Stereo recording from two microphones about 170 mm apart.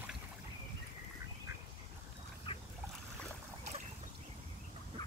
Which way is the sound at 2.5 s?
30° left (ahead or behind).